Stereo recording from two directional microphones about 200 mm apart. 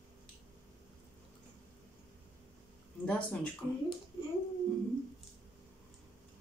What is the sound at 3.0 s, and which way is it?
Speech, 5° left (ahead or behind).